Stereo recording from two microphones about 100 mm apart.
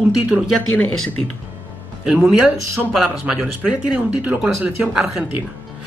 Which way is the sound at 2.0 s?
10° right (ahead or behind).